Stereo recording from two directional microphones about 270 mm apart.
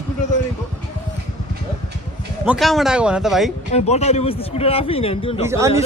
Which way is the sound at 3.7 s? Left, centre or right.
Left.